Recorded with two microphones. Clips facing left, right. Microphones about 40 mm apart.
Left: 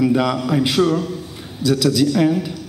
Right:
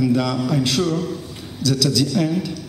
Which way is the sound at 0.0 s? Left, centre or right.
Left.